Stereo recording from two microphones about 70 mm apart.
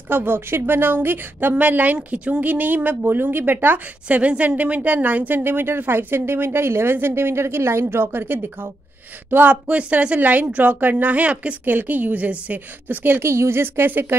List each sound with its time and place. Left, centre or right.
0.1 s a woman's voice: right
13.2 s a woman's voice: right